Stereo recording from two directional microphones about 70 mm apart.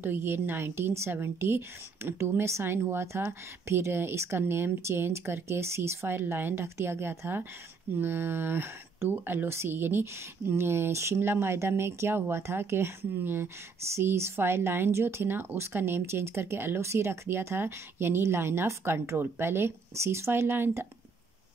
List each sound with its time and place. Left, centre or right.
0.0 s speech: right